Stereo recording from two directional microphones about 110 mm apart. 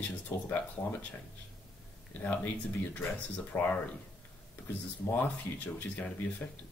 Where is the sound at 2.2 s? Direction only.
15° left (ahead or behind).